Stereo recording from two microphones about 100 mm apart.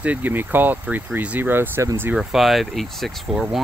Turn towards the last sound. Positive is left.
turn(degrees=-10)  # may be behind; listen again after turning